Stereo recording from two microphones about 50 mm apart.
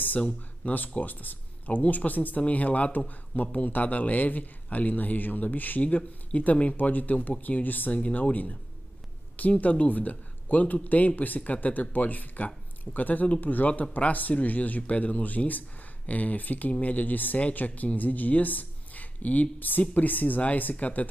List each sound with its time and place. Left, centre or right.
0.2 s speech: left